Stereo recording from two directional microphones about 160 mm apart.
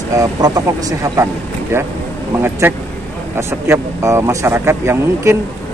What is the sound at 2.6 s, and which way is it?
Speech, 15° right (ahead or behind).